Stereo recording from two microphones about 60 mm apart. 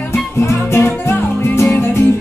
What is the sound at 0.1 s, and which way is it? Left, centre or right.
Music, left.